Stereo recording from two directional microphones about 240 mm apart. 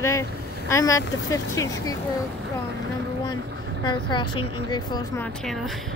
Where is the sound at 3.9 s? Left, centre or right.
Centre.